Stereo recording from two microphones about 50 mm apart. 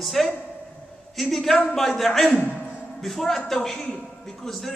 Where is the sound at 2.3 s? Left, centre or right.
Left.